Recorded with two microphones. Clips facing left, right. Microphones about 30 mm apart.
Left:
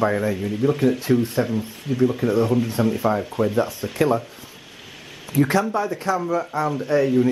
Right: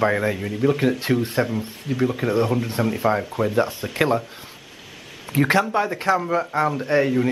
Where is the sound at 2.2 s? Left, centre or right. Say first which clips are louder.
Left 1 dB; right.